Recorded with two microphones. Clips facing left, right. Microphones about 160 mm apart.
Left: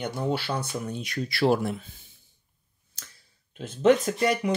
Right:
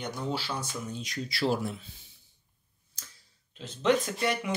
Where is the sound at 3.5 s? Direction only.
55° left (ahead or behind).